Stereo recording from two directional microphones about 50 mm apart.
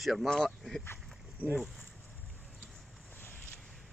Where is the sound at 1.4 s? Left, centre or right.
Right.